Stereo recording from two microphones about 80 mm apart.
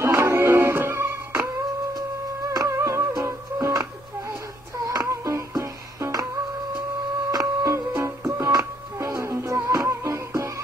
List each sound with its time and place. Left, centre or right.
0.0 s music: right
2.5 s music: right
7.2 s printer: right
8.0 s music: right